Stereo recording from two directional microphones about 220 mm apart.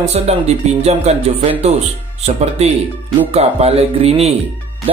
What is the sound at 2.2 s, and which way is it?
Speech, 30° right (ahead or behind).